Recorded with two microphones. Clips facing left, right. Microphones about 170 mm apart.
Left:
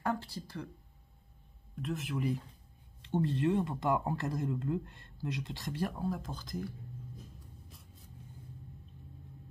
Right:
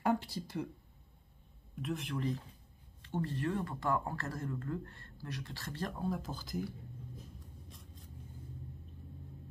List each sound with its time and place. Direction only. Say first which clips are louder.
0.0 s speech: right 2 dB; 15° right (ahead or behind)
1.8 s speech: left 2 dB; centre (ahead or behind)
7.7 s vehicle: right 2 dB; centre (ahead or behind)